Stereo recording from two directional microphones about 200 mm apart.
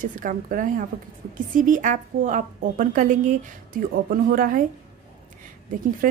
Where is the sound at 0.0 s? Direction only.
40° right (ahead or behind).